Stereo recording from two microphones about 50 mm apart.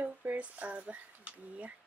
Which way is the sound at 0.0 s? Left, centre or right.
Right.